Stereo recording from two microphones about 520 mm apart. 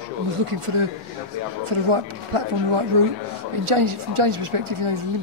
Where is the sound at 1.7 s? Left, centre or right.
Right.